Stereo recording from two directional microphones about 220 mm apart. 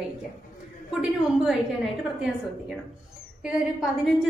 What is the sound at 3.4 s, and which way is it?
Speech, 5° right (ahead or behind).